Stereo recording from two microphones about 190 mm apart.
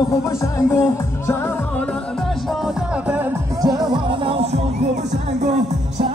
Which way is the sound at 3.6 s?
20° right (ahead or behind).